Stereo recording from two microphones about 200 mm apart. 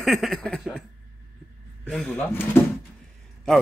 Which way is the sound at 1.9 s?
Centre (ahead or behind).